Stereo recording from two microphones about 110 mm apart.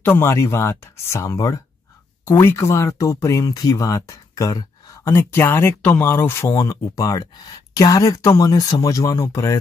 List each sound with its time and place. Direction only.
0.0 s speech: 20° left (ahead or behind)